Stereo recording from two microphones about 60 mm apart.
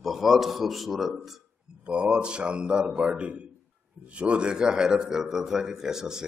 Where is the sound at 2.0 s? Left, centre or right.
Centre.